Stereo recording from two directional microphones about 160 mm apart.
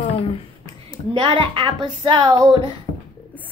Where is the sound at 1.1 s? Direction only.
30° right (ahead or behind).